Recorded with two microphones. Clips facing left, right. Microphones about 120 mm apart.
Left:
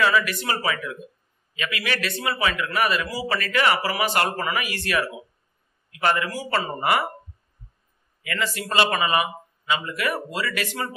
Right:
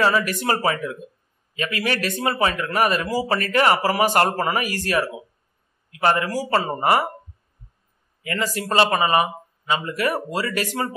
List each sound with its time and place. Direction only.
0.0 s a man's voice: 40° right (ahead or behind)
8.2 s a man's voice: 35° right (ahead or behind)